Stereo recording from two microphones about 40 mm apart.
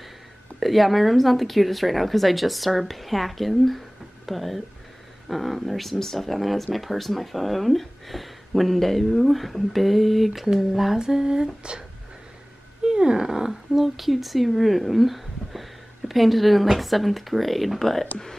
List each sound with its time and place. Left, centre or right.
0.6 s speech: centre
11.0 s speech: centre
12.8 s speech: centre
13.5 s speech: centre